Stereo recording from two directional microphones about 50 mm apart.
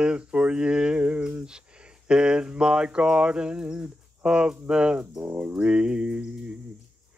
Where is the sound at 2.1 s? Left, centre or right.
Centre.